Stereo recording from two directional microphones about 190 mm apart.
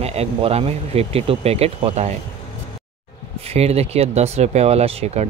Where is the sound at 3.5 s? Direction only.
35° right (ahead or behind).